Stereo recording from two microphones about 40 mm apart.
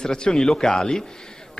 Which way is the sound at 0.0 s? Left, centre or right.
Centre.